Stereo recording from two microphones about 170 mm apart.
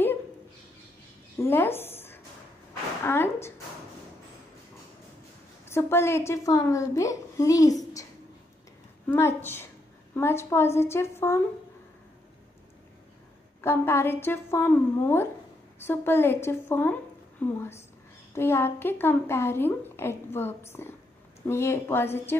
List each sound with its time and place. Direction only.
1.4 s a woman's voice: 15° left (ahead or behind)
5.7 s a woman's voice: 15° left (ahead or behind)
13.6 s a woman's voice: 15° left (ahead or behind)